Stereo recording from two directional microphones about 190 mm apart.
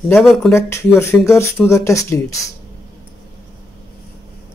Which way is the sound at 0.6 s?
15° left (ahead or behind).